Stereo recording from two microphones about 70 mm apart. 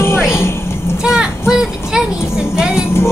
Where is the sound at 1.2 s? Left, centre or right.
Centre.